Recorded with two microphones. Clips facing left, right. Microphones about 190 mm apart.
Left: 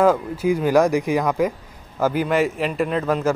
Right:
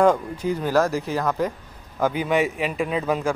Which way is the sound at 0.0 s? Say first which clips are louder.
Left 1 dB; 5° left (ahead or behind).